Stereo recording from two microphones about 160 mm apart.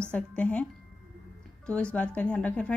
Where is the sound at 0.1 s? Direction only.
10° left (ahead or behind).